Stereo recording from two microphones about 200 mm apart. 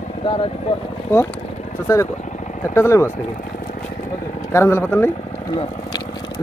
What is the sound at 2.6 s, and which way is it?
Speech, 15° left (ahead or behind).